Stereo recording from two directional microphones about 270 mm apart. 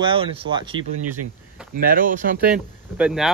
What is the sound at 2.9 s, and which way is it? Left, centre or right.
Speech, centre.